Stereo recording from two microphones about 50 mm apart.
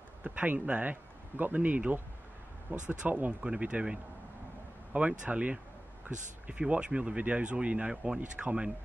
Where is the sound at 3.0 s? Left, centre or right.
Right.